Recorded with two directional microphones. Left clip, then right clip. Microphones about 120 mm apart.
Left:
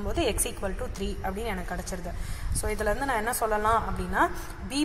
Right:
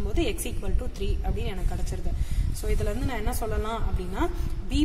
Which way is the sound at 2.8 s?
20° right (ahead or behind).